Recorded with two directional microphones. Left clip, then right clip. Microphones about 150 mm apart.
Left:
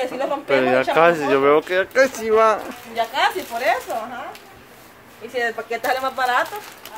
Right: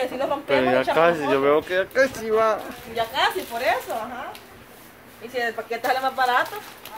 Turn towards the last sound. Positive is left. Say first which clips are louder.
# left 1 dB
turn(degrees=20)  # may be behind; listen again after turning